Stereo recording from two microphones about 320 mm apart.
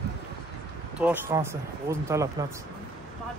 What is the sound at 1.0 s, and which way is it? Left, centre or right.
Speech, centre.